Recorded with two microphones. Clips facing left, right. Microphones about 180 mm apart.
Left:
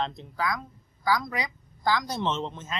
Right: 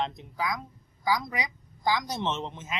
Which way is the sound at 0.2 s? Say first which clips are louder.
Left 2 dB; 15° right (ahead or behind).